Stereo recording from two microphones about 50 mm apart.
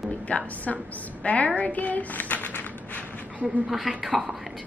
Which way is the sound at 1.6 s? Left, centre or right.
Left.